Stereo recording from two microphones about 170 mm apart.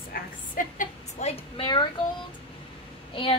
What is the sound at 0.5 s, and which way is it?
A woman's voice, 45° left (ahead or behind).